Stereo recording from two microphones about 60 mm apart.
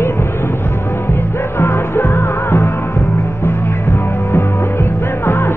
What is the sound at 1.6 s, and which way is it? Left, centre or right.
Music, left.